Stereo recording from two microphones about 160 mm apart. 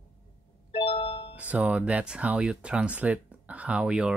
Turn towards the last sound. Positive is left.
turn(degrees=-5)  # may be behind; listen again after turning